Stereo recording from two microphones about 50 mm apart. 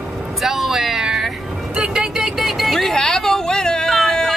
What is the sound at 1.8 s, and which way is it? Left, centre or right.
Music, centre.